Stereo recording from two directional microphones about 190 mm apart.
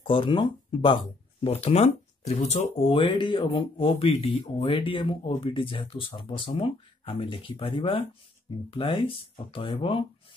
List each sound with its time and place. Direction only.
0.0 s speech: 25° left (ahead or behind)